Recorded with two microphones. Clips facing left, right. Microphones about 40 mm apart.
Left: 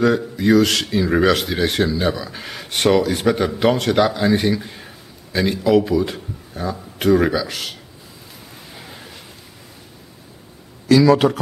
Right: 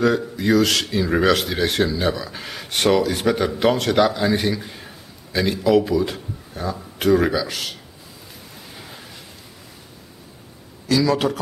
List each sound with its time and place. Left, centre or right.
0.0 s speech: centre
8.5 s a sound: centre
10.9 s speech: centre